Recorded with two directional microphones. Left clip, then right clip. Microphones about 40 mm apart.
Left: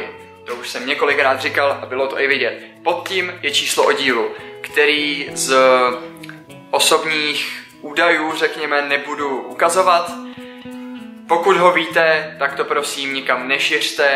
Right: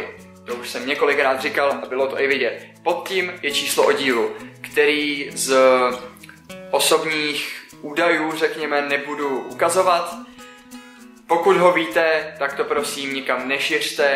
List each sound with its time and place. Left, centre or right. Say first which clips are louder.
0.6 s speech: left 2 dB; right
11.5 s speech: left 4 dB; centre